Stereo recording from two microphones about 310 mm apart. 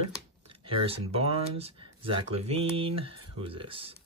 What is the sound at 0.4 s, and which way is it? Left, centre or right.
Speech, centre.